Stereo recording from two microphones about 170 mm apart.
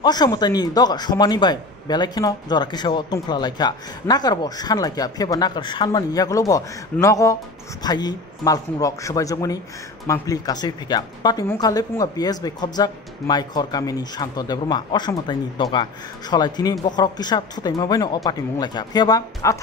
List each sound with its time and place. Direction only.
0.0 s a man's voice: 25° left (ahead or behind)